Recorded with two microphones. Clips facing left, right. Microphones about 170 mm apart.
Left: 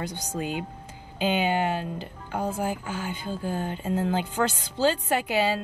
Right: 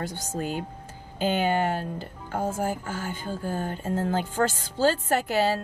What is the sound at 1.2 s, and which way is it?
A woman's voice, 50° right (ahead or behind).